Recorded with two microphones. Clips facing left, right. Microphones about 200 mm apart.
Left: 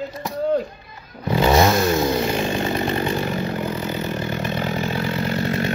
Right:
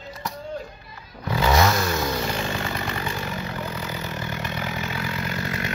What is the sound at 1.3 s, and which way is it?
Chainsaw, 25° left (ahead or behind).